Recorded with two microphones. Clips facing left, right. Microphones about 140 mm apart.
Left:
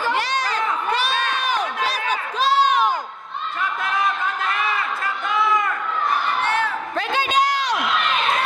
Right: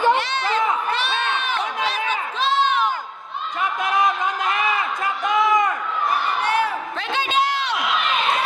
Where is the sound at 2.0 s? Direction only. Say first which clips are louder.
Left 2 dB; 40° left (ahead or behind).